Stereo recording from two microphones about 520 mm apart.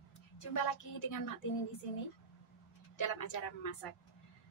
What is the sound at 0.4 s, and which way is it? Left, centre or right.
Speech, left.